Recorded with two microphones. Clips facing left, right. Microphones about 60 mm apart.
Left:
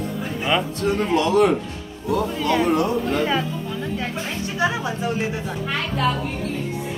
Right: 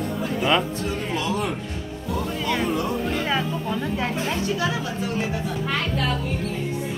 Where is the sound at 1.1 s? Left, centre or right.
Left.